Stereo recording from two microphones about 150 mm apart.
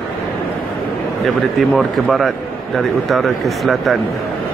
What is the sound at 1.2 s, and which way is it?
Speech, centre (ahead or behind).